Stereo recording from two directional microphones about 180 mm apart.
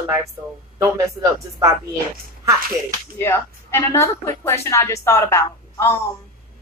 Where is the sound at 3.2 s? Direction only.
15° left (ahead or behind).